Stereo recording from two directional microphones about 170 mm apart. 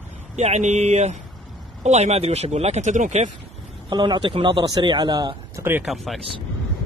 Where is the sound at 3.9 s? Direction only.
25° right (ahead or behind).